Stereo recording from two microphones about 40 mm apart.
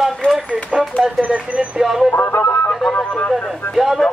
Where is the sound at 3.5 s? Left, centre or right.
Centre.